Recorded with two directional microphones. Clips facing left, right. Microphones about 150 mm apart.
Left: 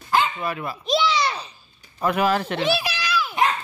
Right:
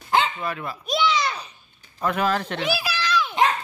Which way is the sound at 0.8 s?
30° left (ahead or behind).